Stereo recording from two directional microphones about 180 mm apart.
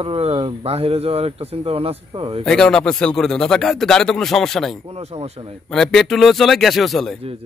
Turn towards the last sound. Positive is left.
turn(degrees=0)  # may be behind; listen again after turning